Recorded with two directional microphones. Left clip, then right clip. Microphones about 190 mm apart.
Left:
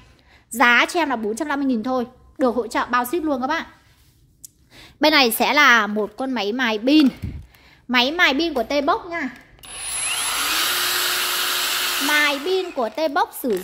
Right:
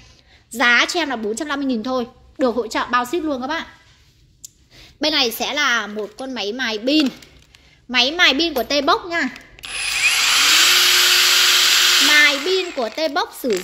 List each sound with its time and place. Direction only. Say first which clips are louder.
0.5 s a woman's voice: even; 5° left (ahead or behind)
4.7 s a child's voice: left 3 dB; 20° left (ahead or behind); by 8.9 s centre (ahead or behind)
9.7 s tools: right 10 dB; 15° left (ahead or behind)
11.3 s a sound: right 8 dB; 20° left (ahead or behind)
12.1 s a child's voice: right 5 dB; 5° right (ahead or behind)